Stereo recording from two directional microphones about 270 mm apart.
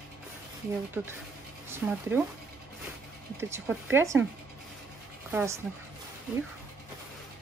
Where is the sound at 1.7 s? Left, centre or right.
Centre.